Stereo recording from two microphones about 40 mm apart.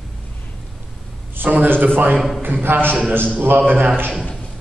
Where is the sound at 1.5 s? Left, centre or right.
Right.